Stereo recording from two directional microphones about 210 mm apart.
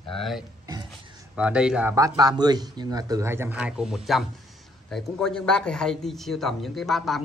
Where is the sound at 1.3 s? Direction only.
5° right (ahead or behind).